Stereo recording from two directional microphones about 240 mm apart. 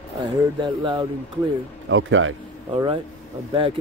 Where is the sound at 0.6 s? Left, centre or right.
Centre.